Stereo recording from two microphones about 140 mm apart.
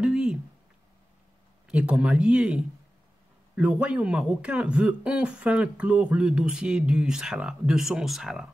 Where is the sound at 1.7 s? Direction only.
10° right (ahead or behind).